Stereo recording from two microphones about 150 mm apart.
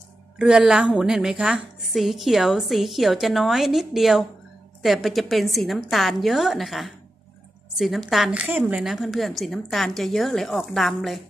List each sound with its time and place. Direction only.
0.4 s a woman's voice: 5° right (ahead or behind)